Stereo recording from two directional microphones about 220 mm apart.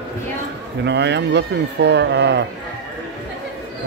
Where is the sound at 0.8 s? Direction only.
50° right (ahead or behind).